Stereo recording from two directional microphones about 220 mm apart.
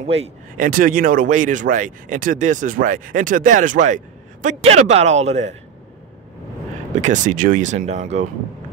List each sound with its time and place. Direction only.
0.0 s speech: 25° right (ahead or behind)
0.7 s speech: 40° right (ahead or behind)
7.0 s speech: 35° right (ahead or behind)